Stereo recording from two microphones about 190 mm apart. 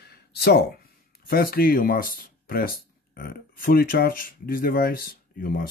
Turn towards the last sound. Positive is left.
turn(degrees=50)  # may be behind; listen again after turning